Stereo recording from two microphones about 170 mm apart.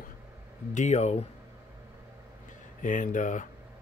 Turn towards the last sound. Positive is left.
turn(degrees=50)  # may be behind; listen again after turning